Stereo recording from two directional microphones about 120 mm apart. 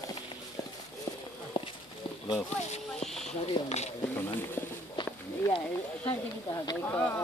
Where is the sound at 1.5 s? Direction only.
45° left (ahead or behind).